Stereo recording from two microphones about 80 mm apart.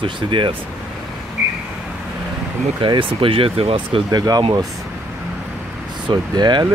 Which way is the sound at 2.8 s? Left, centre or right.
Right.